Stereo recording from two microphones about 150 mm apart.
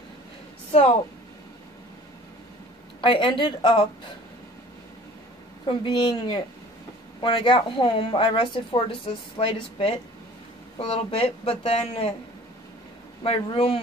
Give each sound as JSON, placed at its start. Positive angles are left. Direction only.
{"t": 0.7, "sound": "speech", "side_deg": 40}
{"t": 3.0, "sound": "a woman's voice", "side_deg": 35}
{"t": 5.7, "sound": "a woman's voice", "side_deg": 35}
{"t": 13.2, "sound": "a woman's voice", "side_deg": 40}